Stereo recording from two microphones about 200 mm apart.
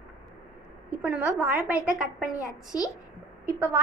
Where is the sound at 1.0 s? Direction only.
5° right (ahead or behind).